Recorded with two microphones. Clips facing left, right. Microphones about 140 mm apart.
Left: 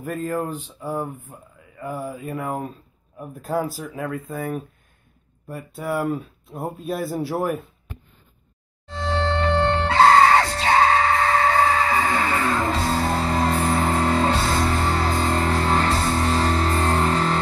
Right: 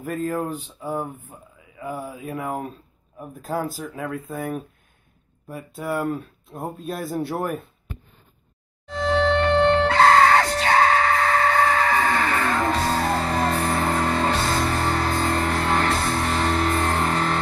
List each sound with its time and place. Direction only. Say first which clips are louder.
0.0 s speech: even; centre (ahead or behind)
8.8 s music: right 4 dB; 30° left (ahead or behind)